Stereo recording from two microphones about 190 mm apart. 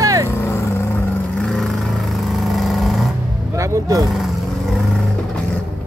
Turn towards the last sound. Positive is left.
turn(degrees=0)  # may be behind; listen again after turning